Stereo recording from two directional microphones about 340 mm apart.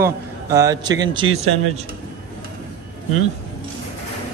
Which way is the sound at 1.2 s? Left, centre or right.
Right.